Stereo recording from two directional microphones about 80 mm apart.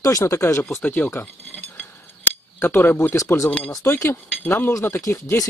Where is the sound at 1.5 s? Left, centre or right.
Left.